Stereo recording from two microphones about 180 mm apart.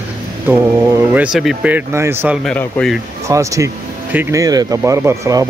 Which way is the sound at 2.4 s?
5° left (ahead or behind).